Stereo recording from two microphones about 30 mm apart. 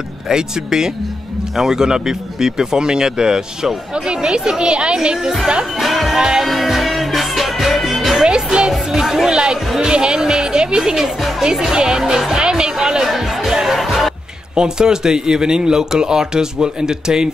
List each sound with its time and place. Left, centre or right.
0.3 s speech: right
4.9 s speech: right
5.8 s music: centre
6.1 s speech: centre
6.4 s music: centre
8.5 s music: right
9.0 s a sound: centre
9.3 s speech: right
12.4 s speech: right
13.0 s speech: centre
13.7 s music: centre
14.5 s speech: right